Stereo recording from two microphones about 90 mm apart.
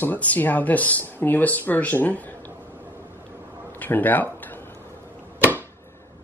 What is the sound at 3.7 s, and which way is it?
Speech, 20° left (ahead or behind).